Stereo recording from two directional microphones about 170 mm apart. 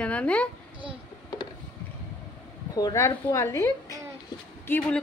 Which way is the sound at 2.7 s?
20° left (ahead or behind).